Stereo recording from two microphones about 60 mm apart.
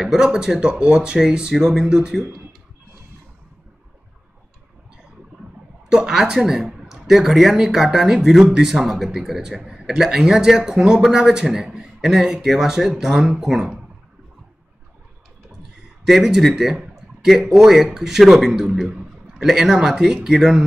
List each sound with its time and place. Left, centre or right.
0.0 s speech: centre
5.9 s speech: centre
16.1 s speech: centre
18.9 s a sound: right
19.3 s speech: centre